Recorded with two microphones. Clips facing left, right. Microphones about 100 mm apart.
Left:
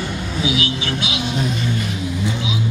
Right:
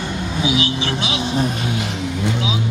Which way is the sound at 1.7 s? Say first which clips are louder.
Even; 70° right (ahead or behind).